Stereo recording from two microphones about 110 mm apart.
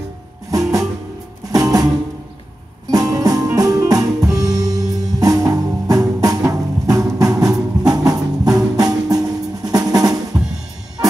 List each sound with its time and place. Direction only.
0.5 s music: 30° right (ahead or behind)
2.9 s music: 35° right (ahead or behind)